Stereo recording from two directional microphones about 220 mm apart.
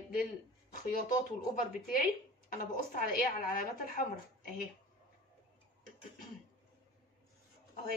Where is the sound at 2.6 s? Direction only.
35° left (ahead or behind).